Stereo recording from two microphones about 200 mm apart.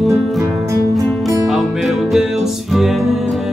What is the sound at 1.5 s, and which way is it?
Music, centre (ahead or behind).